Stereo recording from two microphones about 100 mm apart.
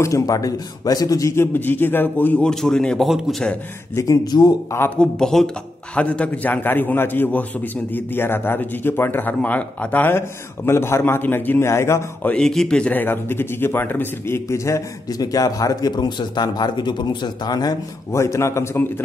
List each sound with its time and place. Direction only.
0.0 s a man's voice: 35° left (ahead or behind)
2.4 s a man's voice: 5° left (ahead or behind)
3.9 s a man's voice: 35° left (ahead or behind)
4.9 s a man's voice: 5° left (ahead or behind); by 12.3 s 25° left (ahead or behind)
12.3 s a man's voice: 5° left (ahead or behind); by 17.7 s 40° left (ahead or behind)
18.1 s a man's voice: 30° left (ahead or behind)